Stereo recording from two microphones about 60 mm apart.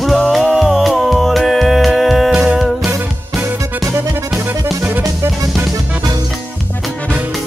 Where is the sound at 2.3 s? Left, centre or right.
Centre.